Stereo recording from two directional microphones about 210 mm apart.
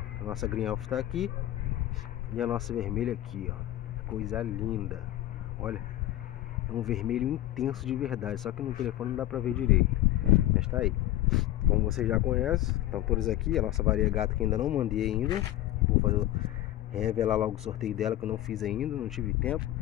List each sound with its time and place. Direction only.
0.3 s speech: centre (ahead or behind)
2.3 s speech: centre (ahead or behind)
10.3 s vehicle: 5° right (ahead or behind)
13.0 s speech: centre (ahead or behind)
16.9 s speech: 5° right (ahead or behind)